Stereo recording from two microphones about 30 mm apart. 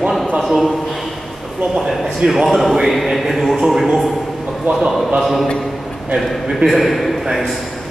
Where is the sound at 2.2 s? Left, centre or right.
Right.